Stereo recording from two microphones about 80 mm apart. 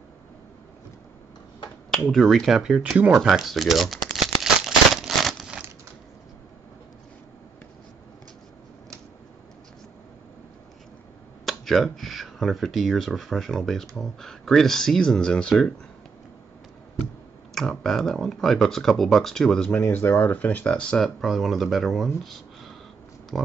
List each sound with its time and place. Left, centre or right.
2.0 s speech: centre
3.3 s a sound: centre
11.4 s speech: centre
17.6 s speech: centre
19.7 s speech: left; by 21.1 s centre
21.2 s speech: centre
22.2 s a sound: centre
23.3 s speech: centre